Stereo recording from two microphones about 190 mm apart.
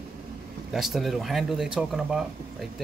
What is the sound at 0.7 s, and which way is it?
Speech, centre (ahead or behind).